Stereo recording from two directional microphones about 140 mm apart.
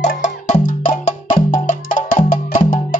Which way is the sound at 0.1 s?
65° left (ahead or behind).